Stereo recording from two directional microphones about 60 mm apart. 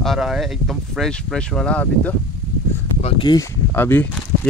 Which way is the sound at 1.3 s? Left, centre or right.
Centre.